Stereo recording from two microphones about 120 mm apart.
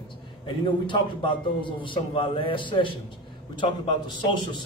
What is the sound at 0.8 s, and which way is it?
Speech, 45° left (ahead or behind).